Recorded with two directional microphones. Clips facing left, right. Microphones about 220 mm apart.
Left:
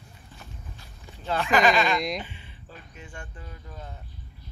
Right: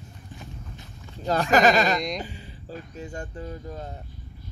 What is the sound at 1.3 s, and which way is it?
Speech, 40° right (ahead or behind).